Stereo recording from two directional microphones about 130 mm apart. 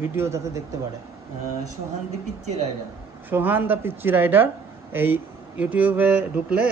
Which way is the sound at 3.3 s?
15° right (ahead or behind).